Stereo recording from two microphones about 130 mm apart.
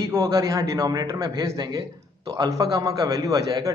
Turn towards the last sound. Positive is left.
turn(degrees=-25)  # may be behind; listen again after turning